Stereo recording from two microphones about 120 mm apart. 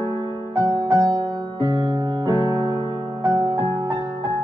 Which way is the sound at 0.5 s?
35° right (ahead or behind).